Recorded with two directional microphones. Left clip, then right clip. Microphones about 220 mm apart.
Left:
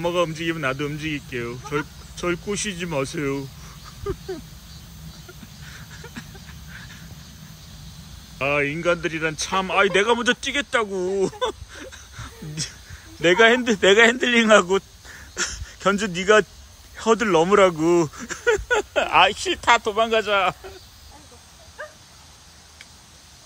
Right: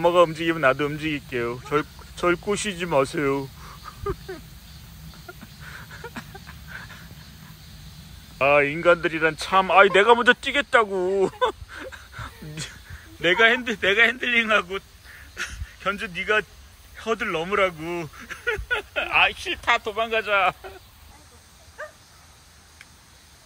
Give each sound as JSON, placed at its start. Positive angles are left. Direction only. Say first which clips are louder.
{"t": 0.0, "sound": "speech", "louder": "right 5 dB", "side_deg": 0}
{"t": 5.7, "sound": "a sound", "louder": "right 3 dB", "side_deg": 0}
{"t": 8.4, "sound": "speech", "louder": "right 4 dB", "side_deg": 0}